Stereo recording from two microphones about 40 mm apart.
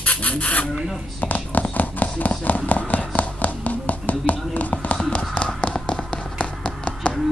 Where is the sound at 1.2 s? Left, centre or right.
Left.